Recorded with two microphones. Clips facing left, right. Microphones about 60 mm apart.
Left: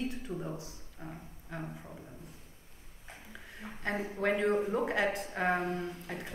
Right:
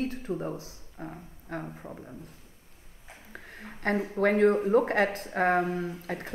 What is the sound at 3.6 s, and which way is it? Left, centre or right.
A woman's voice, right.